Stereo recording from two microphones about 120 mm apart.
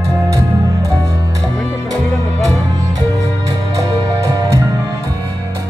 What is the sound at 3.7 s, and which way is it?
Music, 25° right (ahead or behind).